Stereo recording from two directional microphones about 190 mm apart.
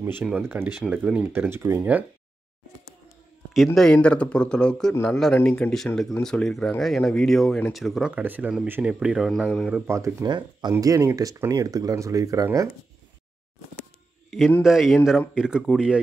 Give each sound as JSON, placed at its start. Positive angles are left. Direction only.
{"t": 0.0, "sound": "speech", "side_deg": -10}
{"t": 3.5, "sound": "speech", "side_deg": 0}
{"t": 14.3, "sound": "speech", "side_deg": 0}